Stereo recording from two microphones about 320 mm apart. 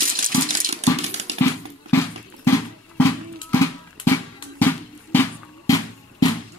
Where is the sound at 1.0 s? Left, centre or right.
Right.